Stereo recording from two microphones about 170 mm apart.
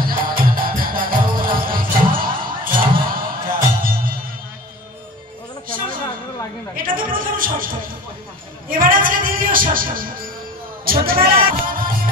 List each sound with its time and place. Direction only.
0.0 s music: 55° right (ahead or behind)
6.8 s music: 55° right (ahead or behind)
8.6 s a sound: 55° right (ahead or behind)
10.9 s music: 60° right (ahead or behind)